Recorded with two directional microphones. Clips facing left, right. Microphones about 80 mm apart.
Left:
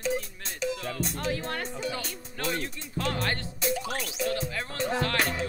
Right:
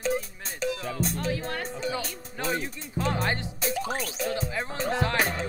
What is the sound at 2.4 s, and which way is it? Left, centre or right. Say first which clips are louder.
Speech: right 2 dB; centre.